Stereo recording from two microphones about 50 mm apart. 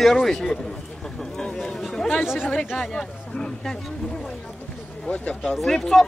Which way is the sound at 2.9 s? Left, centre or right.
Centre.